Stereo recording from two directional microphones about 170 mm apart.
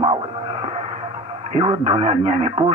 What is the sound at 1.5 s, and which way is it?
Speech, 35° right (ahead or behind).